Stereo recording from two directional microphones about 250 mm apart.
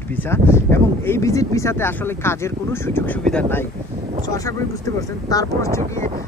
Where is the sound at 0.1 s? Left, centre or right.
Centre.